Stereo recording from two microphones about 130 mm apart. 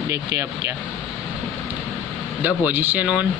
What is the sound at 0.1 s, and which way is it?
Speech, 25° right (ahead or behind).